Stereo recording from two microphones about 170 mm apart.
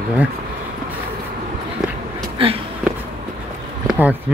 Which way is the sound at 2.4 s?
30° right (ahead or behind).